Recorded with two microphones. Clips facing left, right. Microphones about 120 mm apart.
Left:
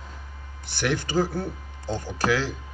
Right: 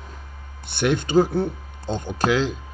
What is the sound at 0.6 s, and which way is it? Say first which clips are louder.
Speech: right 5 dB; 20° right (ahead or behind).